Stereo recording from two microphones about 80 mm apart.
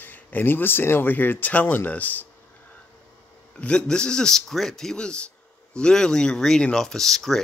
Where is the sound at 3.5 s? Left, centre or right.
Centre.